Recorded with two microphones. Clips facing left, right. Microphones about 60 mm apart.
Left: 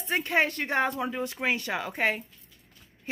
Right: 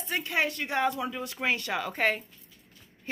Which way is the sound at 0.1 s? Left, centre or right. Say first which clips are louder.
Left 3 dB; left.